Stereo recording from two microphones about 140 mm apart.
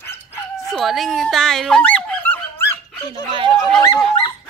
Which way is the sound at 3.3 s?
40° right (ahead or behind).